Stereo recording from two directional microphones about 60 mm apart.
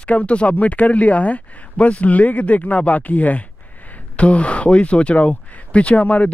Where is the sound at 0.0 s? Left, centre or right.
Left.